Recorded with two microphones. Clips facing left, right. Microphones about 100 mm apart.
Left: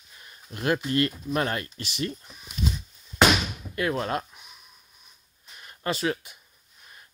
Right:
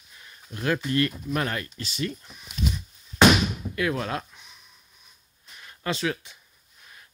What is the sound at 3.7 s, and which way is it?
Speech, 35° left (ahead or behind).